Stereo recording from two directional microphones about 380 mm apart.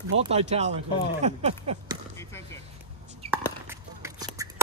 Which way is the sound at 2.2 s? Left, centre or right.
Centre.